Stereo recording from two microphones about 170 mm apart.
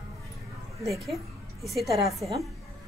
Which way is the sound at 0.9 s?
Centre (ahead or behind).